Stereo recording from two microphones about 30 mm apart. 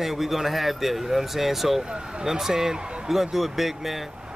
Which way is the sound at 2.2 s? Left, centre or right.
Right.